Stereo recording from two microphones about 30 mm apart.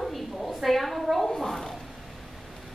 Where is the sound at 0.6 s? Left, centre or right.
Centre.